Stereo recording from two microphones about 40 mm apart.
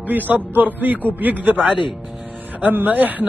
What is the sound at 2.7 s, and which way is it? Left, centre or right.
Mantra, right.